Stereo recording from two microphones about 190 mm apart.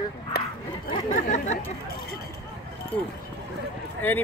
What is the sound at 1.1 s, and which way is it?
Speech, 40° left (ahead or behind).